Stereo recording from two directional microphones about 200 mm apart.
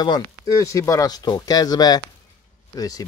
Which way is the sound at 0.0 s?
20° left (ahead or behind).